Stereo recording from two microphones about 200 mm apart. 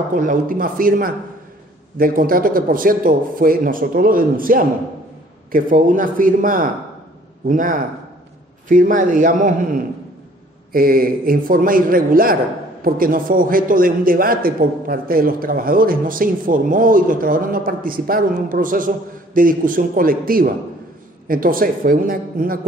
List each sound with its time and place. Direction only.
0.1 s a man's voice: 40° right (ahead or behind)